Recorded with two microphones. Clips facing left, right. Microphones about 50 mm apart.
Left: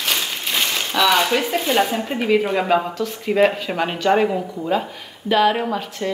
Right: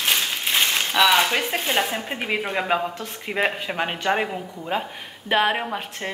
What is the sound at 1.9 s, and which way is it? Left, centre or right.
Speech, centre.